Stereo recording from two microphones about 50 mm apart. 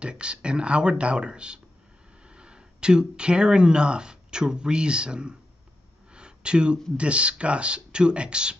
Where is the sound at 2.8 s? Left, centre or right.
Centre.